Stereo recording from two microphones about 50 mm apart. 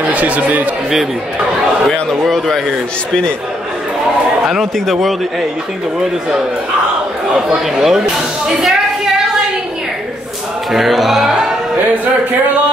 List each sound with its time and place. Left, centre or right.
0.1 s speech: right
1.9 s a man's voice: centre
7.3 s speech: centre
8.5 s a sound: centre
10.7 s a man's voice: centre